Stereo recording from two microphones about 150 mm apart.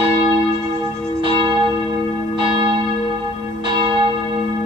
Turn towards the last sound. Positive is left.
turn(degrees=-35)  # may be behind; listen again after turning